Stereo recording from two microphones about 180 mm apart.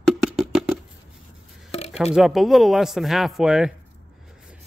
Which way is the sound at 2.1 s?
Centre (ahead or behind).